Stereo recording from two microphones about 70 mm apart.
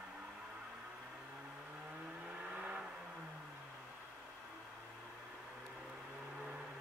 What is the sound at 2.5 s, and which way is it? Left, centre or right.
Vehicle, centre.